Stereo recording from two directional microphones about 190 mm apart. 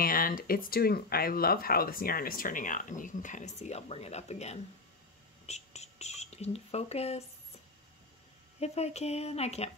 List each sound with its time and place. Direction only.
0.0 s speech: 50° left (ahead or behind)
5.5 s a sound: 35° left (ahead or behind)
8.5 s speech: 35° left (ahead or behind)